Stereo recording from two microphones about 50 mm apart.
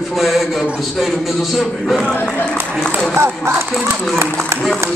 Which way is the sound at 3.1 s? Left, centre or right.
Right.